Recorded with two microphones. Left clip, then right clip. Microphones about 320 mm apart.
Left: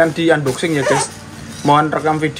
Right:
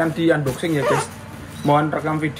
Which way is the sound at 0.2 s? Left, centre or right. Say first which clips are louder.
Left 4 dB; left.